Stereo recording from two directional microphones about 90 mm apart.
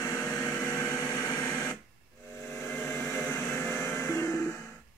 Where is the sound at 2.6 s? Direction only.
25° left (ahead or behind).